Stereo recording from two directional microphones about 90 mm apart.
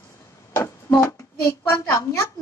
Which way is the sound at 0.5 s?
30° left (ahead or behind).